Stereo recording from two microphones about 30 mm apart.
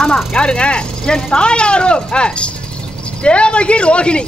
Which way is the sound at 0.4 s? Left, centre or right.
Left.